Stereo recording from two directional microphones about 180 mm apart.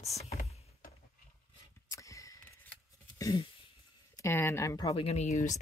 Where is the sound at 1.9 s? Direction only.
15° left (ahead or behind).